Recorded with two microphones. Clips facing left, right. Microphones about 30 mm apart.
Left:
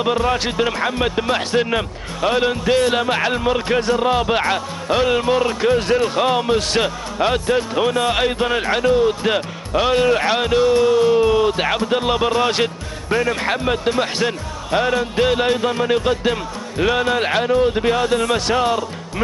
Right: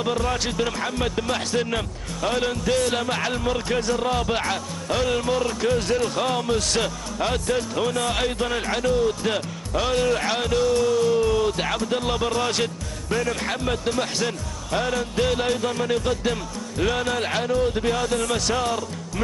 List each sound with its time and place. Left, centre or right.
0.0 s speech: left